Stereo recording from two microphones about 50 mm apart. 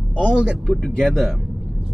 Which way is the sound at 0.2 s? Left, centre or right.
Centre.